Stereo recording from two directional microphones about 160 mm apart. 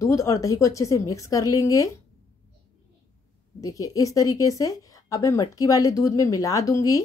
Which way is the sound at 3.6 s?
20° left (ahead or behind).